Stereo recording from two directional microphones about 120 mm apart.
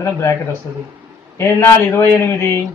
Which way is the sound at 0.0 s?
25° left (ahead or behind).